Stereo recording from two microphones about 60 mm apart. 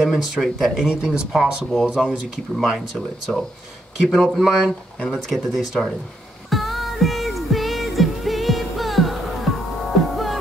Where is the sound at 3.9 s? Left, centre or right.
Centre.